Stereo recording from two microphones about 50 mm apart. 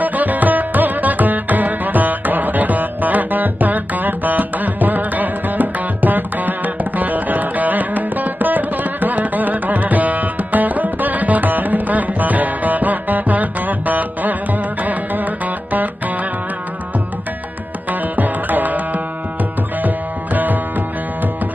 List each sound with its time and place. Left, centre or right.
0.0 s music: right
18.1 s music: right